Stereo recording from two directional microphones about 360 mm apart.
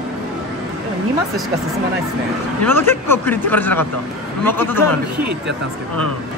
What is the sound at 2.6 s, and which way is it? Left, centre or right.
Speech, centre.